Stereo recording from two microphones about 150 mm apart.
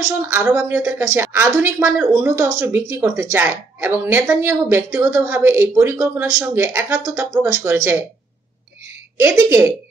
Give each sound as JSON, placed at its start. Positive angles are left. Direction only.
{"t": 0.3, "sound": "a woman's voice", "side_deg": -15}
{"t": 9.2, "sound": "a woman's voice", "side_deg": -15}